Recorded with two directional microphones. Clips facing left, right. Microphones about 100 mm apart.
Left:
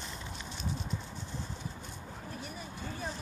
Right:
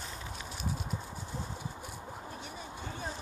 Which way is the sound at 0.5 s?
5° right (ahead or behind).